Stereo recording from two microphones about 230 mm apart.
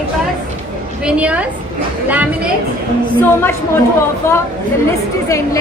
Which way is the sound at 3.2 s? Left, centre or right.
Centre.